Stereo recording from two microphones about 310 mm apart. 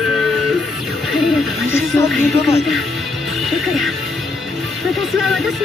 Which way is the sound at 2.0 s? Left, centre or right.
Centre.